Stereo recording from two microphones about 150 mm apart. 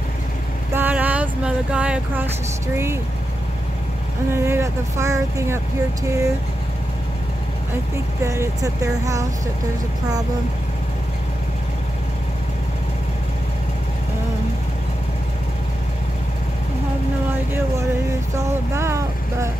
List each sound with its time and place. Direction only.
0.7 s speech: 10° right (ahead or behind)
4.3 s speech: 15° right (ahead or behind)
8.2 s speech: 20° right (ahead or behind)
18.3 s speech: 20° right (ahead or behind)